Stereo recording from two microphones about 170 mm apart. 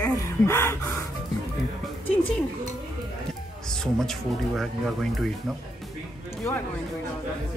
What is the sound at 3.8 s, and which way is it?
Speech, centre (ahead or behind).